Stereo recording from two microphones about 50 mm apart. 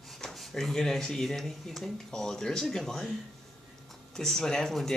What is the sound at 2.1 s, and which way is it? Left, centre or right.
Speech, centre.